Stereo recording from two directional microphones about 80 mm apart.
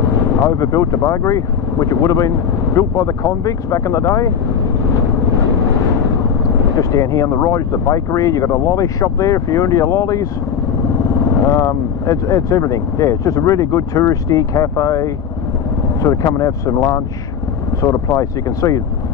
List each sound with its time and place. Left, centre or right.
0.4 s speech: left
6.4 s speech: left
11.4 s speech: left